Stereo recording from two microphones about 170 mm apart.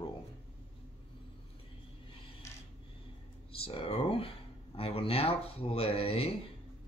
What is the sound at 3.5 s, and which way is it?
Speech, 35° left (ahead or behind).